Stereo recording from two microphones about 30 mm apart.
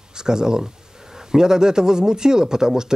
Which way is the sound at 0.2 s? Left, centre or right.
Right.